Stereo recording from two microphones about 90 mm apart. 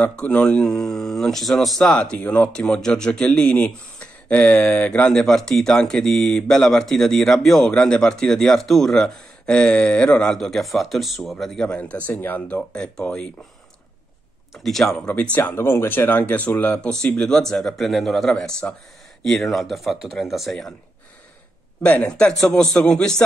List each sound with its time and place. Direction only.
0.0 s speech: 15° left (ahead or behind)
14.5 s speech: 5° left (ahead or behind)
15.3 s speech: 20° left (ahead or behind); by 20.7 s centre (ahead or behind)
21.8 s speech: 15° left (ahead or behind)